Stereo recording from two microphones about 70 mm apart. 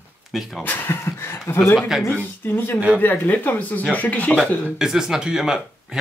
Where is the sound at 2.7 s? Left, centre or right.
Centre.